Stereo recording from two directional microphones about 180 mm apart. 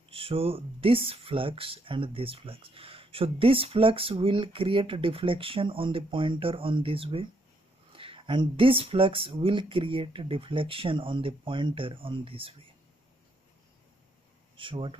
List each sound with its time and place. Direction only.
0.1 s speech: 30° right (ahead or behind)
14.6 s speech: 30° right (ahead or behind)